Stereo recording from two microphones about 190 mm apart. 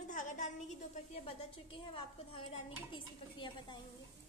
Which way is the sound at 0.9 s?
30° left (ahead or behind).